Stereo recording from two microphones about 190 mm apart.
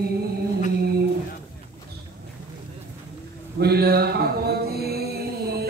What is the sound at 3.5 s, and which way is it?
Mantra, 55° right (ahead or behind).